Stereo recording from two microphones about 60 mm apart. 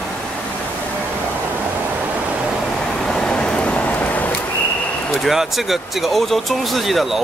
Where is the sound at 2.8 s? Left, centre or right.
Centre; by 4.4 s left.